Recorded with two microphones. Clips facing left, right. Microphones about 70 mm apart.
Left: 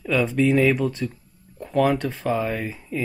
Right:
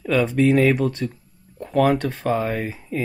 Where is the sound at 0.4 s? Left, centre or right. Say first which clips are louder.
Right 2 dB; right.